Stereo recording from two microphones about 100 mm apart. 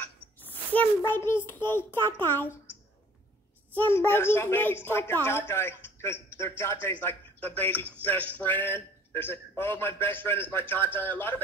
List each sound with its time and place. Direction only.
0.4 s a child's voice: 20° left (ahead or behind)
3.7 s a woman's voice: 20° left (ahead or behind)